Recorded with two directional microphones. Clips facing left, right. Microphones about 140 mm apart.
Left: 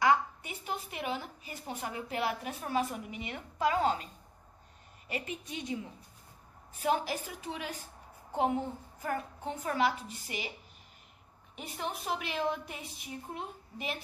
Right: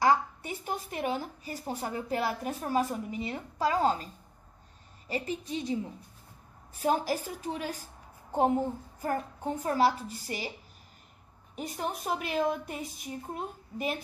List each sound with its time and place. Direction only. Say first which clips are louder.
0.0 s a woman's voice: right 2 dB; 35° right (ahead or behind)
11.5 s a woman's voice: right 4 dB; 40° right (ahead or behind)